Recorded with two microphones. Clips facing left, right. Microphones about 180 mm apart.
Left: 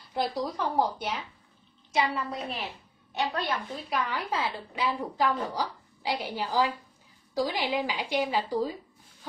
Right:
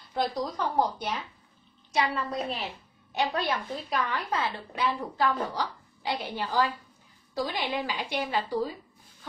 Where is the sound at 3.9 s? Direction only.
10° left (ahead or behind).